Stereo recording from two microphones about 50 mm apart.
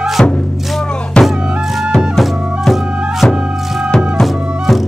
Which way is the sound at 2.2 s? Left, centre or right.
Centre.